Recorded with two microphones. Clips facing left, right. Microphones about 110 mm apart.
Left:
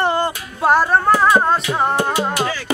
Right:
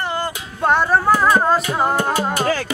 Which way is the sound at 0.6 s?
Centre (ahead or behind).